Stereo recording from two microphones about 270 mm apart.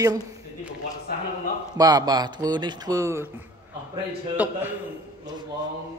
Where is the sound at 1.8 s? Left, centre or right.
Centre.